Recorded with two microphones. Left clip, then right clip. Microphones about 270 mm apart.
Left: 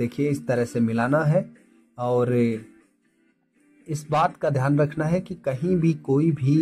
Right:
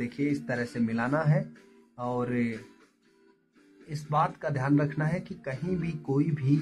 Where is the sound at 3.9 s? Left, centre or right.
Left.